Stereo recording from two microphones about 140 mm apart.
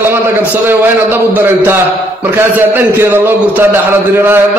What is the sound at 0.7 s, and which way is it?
A man's voice, 15° right (ahead or behind).